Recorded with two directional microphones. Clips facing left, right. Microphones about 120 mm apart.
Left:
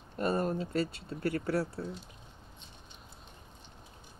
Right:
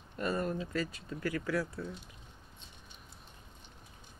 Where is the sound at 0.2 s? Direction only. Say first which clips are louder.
Left 3 dB; 35° left (ahead or behind).